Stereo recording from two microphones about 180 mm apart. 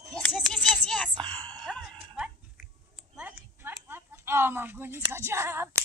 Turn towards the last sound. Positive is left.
turn(degrees=-15)  # may be behind; listen again after turning